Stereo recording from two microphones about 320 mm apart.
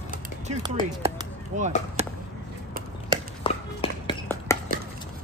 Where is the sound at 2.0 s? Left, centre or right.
Centre.